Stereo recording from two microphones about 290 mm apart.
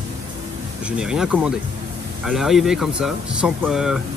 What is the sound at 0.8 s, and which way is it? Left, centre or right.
Speech, centre.